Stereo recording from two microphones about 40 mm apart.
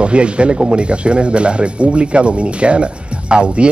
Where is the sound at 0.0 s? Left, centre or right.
Right.